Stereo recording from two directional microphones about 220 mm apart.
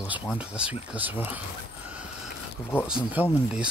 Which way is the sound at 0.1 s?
5° right (ahead or behind).